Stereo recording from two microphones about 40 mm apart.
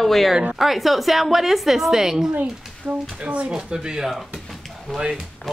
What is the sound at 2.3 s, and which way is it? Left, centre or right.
Speech, right.